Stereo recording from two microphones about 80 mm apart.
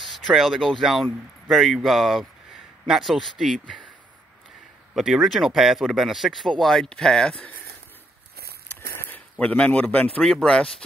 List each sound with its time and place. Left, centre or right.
0.0 s speech: centre
4.9 s speech: centre
9.1 s speech: centre
10.2 s speech: centre